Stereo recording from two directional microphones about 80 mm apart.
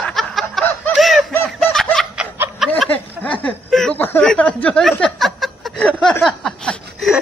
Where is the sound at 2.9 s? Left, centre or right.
Centre.